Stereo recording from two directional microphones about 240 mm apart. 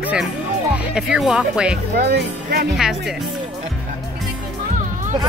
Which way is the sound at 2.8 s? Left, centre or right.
Centre.